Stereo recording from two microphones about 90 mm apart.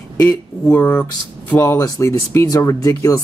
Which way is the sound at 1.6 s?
35° left (ahead or behind).